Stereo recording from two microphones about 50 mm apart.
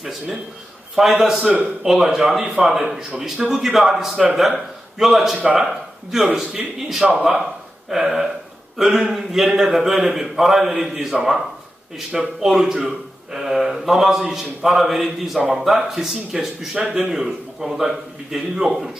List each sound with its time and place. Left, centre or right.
0.9 s a man's voice: centre
12.1 s speech: centre
12.4 s speech: centre